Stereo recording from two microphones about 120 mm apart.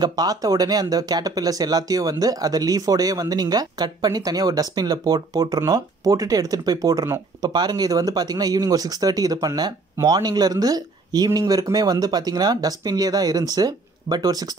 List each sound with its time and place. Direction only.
0.0 s speech: 35° right (ahead or behind)